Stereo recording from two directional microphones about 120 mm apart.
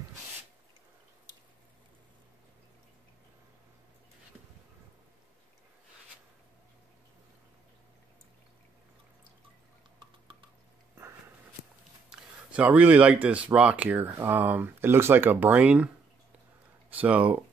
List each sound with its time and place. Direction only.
9.9 s drip: 45° right (ahead or behind)
12.1 s speech: 10° right (ahead or behind)
16.9 s speech: 10° right (ahead or behind)